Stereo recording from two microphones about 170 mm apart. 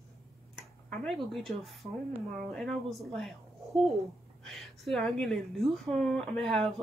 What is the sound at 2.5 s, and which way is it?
A woman's voice, centre (ahead or behind).